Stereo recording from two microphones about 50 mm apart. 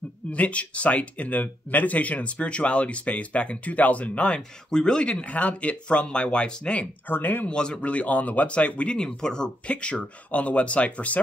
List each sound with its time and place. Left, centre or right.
0.3 s speech: left
4.6 s speech: centre
5.1 s speech: left
7.1 s speech: left
7.4 s speech: centre